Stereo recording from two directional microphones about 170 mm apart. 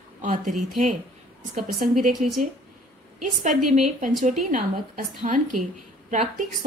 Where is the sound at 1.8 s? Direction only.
50° right (ahead or behind).